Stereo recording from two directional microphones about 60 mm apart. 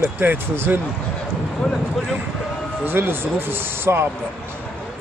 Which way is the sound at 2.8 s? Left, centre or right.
Right.